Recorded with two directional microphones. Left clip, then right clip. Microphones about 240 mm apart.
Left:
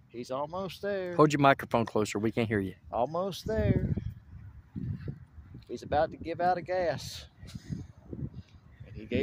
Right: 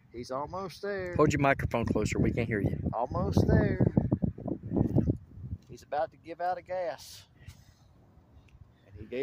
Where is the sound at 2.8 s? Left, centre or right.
Left.